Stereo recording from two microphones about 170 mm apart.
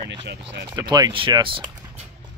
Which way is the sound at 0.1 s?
90° right.